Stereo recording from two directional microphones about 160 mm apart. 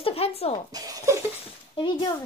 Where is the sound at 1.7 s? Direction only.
30° left (ahead or behind).